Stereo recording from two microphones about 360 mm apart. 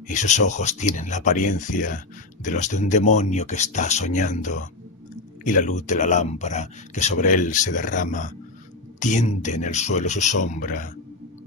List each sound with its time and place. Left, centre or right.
0.1 s speech: centre